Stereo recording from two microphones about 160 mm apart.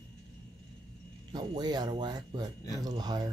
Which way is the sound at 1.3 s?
25° right (ahead or behind).